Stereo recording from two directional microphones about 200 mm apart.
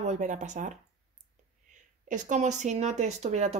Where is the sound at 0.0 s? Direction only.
35° right (ahead or behind).